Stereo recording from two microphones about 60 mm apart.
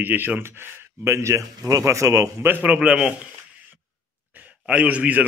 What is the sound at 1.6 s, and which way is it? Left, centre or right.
Speech, right.